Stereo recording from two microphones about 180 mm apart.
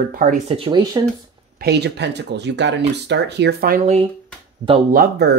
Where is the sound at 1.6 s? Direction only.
70° right (ahead or behind).